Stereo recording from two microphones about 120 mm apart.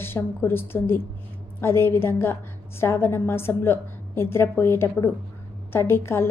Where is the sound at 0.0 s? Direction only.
20° left (ahead or behind).